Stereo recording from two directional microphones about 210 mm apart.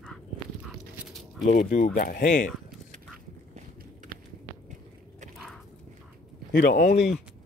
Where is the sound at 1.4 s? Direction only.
35° left (ahead or behind).